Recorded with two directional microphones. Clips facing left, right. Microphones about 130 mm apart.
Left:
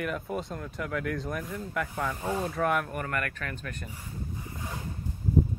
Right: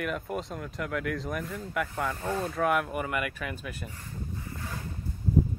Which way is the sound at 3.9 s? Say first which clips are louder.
Even; 15° left (ahead or behind).